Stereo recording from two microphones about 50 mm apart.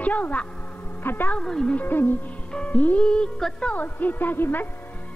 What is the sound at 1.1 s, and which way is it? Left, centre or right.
Music, left.